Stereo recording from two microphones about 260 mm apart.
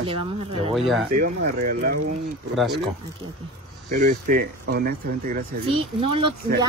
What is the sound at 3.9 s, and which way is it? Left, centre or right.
Speech, right.